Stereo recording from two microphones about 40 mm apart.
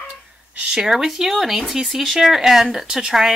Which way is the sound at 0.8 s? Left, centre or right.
Centre.